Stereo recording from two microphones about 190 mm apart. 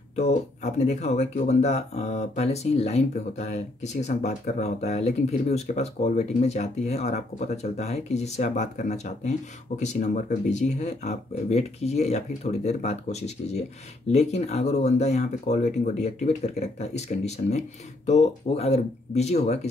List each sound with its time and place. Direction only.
0.1 s speech: 35° left (ahead or behind)